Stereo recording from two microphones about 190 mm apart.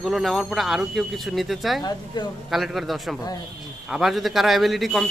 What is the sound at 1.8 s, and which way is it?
Speech, 20° left (ahead or behind).